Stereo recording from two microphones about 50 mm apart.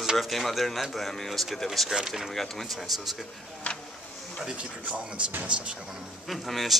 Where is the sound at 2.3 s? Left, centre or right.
Centre.